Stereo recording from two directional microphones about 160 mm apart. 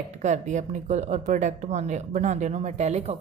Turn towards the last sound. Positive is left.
turn(degrees=-40)  # may be behind; listen again after turning